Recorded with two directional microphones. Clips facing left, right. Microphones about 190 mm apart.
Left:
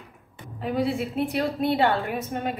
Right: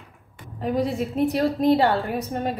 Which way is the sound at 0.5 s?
40° right (ahead or behind).